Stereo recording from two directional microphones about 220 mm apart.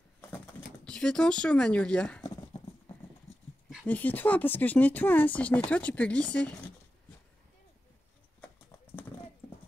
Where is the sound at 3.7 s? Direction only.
5° left (ahead or behind).